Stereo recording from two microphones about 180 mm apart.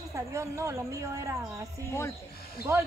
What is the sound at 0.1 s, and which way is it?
A woman's voice, 15° right (ahead or behind).